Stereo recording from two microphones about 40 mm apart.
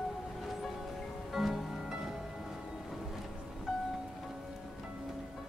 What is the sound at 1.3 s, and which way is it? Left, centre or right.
Music, centre.